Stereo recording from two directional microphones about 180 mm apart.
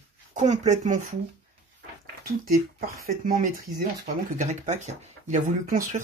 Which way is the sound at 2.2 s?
50° right (ahead or behind).